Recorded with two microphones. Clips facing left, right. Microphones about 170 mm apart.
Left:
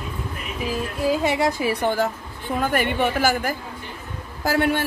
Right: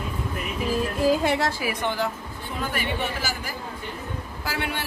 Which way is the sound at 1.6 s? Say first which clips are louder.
Left 5 dB; 40° left (ahead or behind).